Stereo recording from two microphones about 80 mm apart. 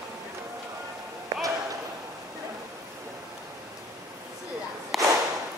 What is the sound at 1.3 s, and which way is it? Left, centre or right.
Basketball bounce, right.